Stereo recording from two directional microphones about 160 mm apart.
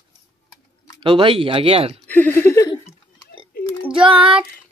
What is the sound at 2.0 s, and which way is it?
Speech, 10° left (ahead or behind).